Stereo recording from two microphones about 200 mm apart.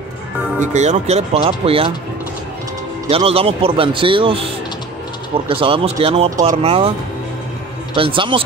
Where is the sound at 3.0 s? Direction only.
30° right (ahead or behind).